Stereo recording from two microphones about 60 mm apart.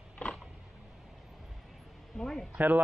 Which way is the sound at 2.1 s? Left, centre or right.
Centre.